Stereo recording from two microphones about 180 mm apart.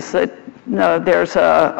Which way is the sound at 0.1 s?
10° left (ahead or behind).